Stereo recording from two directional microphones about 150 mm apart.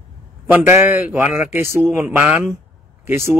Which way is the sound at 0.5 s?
15° right (ahead or behind).